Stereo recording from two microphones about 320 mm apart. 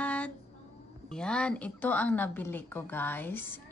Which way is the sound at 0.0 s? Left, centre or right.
Centre.